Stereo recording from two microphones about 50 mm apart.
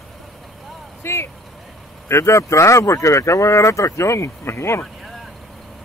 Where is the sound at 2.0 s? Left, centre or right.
Left.